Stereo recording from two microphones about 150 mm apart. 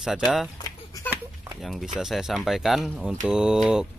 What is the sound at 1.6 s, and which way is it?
Speech, centre (ahead or behind).